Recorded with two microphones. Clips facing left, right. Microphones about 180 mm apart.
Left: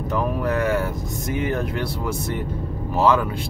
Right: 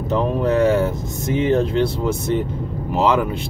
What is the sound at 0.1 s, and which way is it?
Speech, 25° right (ahead or behind).